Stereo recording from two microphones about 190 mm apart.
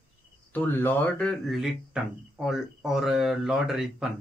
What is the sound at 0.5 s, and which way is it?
Speech, 10° left (ahead or behind).